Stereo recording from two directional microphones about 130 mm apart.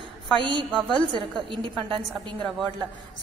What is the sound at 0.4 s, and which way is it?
A woman's voice, 40° right (ahead or behind).